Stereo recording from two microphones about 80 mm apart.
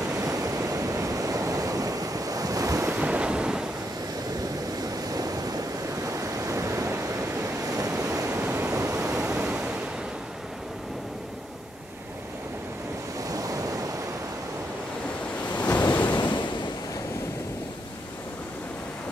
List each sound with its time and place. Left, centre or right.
0.0 s waves: right
3.0 s waves: centre
5.1 s waves: right
8.4 s waves: right
8.7 s waves: right
9.2 s waves: centre
13.3 s waves: right
15.5 s waves: centre
16.2 s waves: left